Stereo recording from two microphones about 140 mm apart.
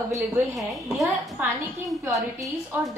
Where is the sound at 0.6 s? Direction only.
Centre (ahead or behind).